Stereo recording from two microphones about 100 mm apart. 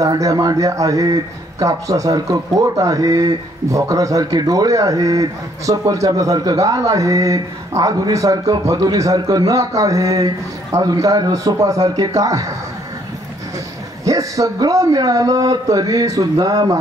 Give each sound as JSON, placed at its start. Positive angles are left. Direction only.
{"t": 0.0, "sound": "a man's voice", "side_deg": -35}
{"t": 14.0, "sound": "a man's voice", "side_deg": -35}